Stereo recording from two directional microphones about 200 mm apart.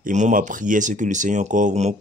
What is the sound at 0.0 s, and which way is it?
Speech, 40° right (ahead or behind).